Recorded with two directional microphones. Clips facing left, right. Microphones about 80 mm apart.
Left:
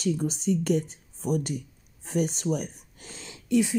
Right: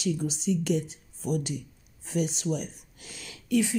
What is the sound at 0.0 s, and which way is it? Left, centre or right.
A woman's voice, left.